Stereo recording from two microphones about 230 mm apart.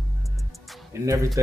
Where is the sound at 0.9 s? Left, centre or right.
Centre.